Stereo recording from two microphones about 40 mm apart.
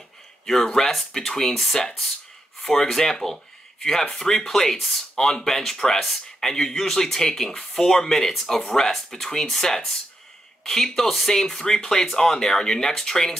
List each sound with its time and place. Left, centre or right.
0.5 s speech: centre